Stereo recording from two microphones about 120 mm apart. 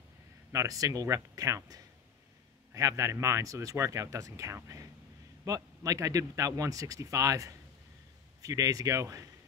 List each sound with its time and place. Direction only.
0.5 s speech: 25° right (ahead or behind)